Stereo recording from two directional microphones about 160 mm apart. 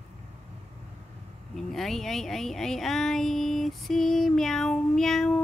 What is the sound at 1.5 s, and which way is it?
Speech, centre (ahead or behind).